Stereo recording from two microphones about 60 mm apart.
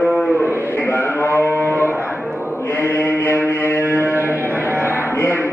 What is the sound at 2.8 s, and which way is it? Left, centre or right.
Mantra, left.